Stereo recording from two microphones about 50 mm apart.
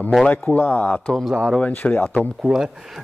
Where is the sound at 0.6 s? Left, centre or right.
Left.